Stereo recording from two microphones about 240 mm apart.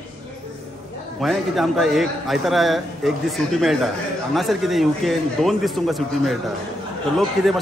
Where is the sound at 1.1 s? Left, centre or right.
Centre.